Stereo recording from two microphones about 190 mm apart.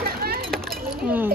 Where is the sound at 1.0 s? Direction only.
10° right (ahead or behind).